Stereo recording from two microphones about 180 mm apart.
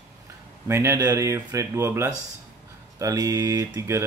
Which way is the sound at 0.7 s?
15° right (ahead or behind).